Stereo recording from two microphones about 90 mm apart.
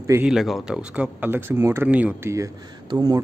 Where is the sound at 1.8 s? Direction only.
15° right (ahead or behind).